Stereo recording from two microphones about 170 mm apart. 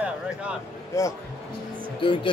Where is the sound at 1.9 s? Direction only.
30° left (ahead or behind).